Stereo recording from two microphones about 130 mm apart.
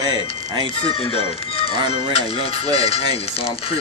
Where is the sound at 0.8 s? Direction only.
50° left (ahead or behind).